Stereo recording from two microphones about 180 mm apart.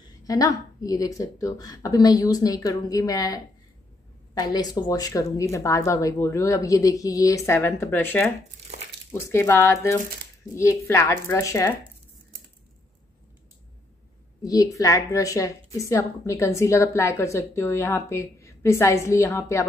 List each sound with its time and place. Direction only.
0.2 s a woman's voice: 20° left (ahead or behind)
14.4 s a woman's voice: 20° left (ahead or behind)